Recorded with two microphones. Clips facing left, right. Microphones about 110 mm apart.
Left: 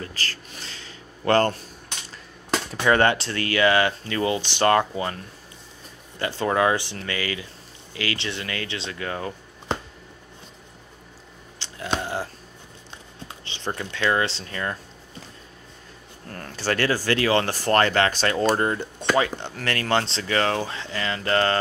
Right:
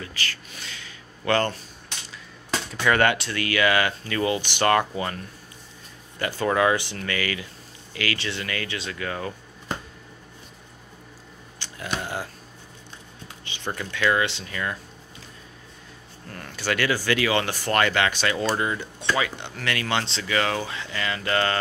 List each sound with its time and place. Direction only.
0.0 s a sound: 35° left (ahead or behind)
2.5 s speech: 30° left (ahead or behind)
6.1 s speech: 25° left (ahead or behind)
11.6 s a sound: 25° left (ahead or behind)
13.7 s speech: 25° left (ahead or behind)
16.3 s speech: 40° left (ahead or behind)